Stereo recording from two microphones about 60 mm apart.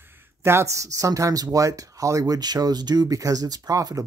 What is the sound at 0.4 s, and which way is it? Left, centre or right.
Speech, right.